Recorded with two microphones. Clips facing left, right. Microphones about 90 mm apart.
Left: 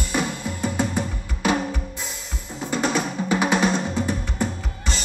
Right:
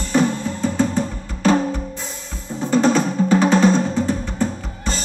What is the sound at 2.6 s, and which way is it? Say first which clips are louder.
Drum: right 7 dB; 30° right (ahead or behind).